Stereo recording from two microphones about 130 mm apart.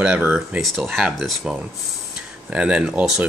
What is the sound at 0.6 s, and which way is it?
Speech, centre (ahead or behind).